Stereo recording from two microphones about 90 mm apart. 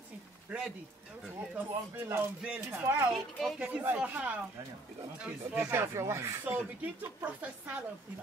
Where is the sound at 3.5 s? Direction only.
15° right (ahead or behind).